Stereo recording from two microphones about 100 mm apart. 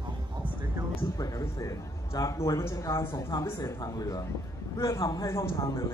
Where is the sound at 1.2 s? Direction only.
35° left (ahead or behind).